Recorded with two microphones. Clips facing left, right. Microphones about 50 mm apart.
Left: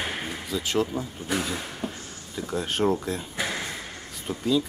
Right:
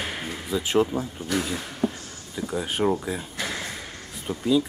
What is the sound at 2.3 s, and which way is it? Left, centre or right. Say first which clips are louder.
Speech: right 1 dB; centre.